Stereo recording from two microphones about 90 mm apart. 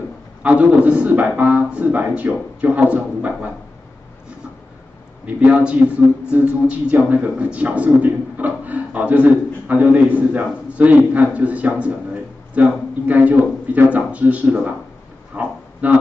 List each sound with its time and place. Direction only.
0.4 s a man's voice: 15° right (ahead or behind)
5.2 s a man's voice: 15° right (ahead or behind)
15.3 s a sound: 15° right (ahead or behind)